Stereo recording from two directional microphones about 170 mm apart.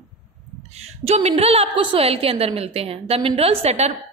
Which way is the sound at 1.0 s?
40° right (ahead or behind).